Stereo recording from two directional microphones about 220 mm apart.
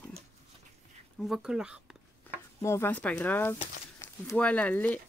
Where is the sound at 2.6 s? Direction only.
10° left (ahead or behind).